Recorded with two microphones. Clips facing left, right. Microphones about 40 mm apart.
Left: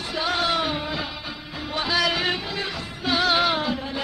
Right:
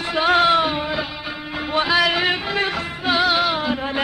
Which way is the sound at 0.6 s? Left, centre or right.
Right.